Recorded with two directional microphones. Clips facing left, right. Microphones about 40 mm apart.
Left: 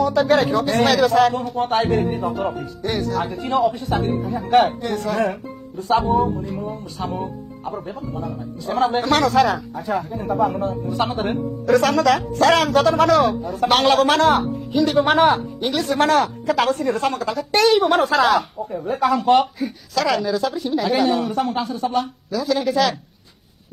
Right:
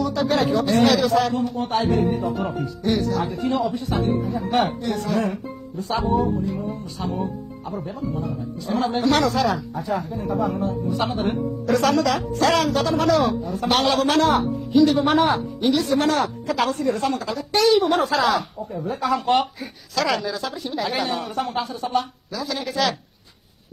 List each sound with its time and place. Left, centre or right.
0.0 s speech: left
5.9 s speech: left
13.7 s speech: left
17.9 s speech: left
19.1 s speech: centre